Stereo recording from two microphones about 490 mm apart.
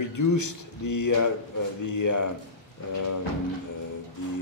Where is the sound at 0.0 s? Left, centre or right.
Left.